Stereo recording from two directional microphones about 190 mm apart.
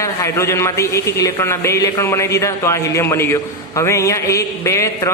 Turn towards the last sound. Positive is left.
turn(degrees=15)  # may be behind; listen again after turning